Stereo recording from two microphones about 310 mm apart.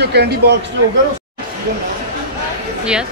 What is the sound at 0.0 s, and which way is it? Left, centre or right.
Speech, right.